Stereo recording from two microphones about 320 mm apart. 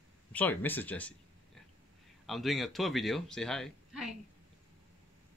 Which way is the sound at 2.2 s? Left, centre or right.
Centre.